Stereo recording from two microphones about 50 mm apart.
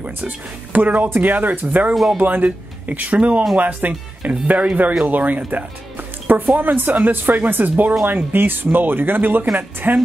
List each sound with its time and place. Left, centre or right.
0.7 s speech: right